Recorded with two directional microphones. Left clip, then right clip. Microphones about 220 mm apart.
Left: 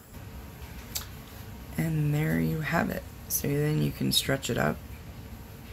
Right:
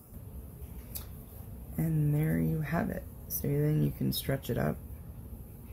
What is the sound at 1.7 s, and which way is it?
Speech, centre (ahead or behind).